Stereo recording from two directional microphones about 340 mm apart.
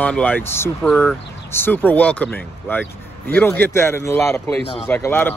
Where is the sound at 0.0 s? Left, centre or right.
Centre.